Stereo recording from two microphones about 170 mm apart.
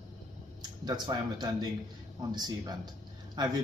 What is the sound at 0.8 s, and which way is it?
Speech, 25° right (ahead or behind).